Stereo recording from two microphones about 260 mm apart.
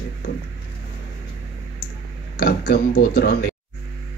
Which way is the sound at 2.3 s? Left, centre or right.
Left.